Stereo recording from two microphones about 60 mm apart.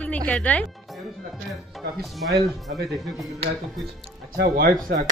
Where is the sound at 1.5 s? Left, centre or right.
Centre.